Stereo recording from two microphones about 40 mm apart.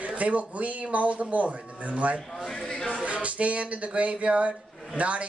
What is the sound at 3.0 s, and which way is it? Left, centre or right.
Music, right.